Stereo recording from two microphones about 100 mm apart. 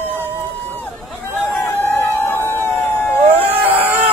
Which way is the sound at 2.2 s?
25° left (ahead or behind).